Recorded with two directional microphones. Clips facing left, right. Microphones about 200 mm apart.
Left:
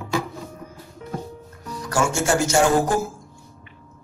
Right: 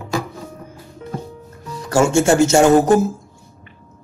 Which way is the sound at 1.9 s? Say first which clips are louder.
Right 7 dB; 25° right (ahead or behind).